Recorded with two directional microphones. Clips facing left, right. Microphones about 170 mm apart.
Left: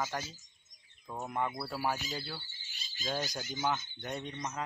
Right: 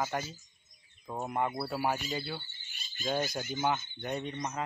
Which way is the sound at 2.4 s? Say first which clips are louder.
Right 2 dB; 55° right (ahead or behind).